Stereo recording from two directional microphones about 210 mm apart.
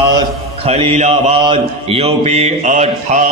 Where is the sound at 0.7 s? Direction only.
30° right (ahead or behind).